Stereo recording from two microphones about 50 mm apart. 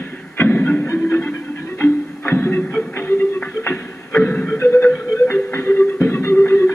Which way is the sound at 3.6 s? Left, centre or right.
Left.